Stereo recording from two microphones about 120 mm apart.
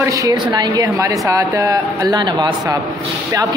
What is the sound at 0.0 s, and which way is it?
Speech, 25° right (ahead or behind).